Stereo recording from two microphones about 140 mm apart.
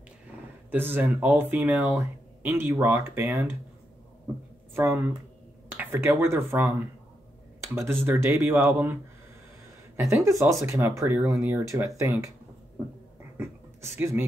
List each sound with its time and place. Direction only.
0.7 s speech: 15° right (ahead or behind)
4.7 s speech: 15° right (ahead or behind)
7.6 s speech: 20° right (ahead or behind)
9.9 s speech: 20° right (ahead or behind)
13.4 s speech: 20° right (ahead or behind)